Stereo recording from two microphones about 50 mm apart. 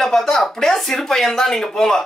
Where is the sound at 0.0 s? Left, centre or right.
Centre.